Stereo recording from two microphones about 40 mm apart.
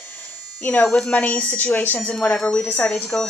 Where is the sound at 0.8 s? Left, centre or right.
Centre.